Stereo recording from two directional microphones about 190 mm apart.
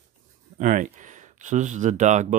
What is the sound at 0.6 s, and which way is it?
Speech, 40° right (ahead or behind).